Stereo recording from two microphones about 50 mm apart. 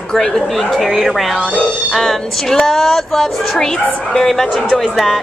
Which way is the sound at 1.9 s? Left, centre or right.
Centre.